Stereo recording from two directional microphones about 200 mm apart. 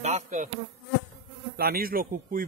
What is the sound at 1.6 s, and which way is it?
Speech, 50° right (ahead or behind).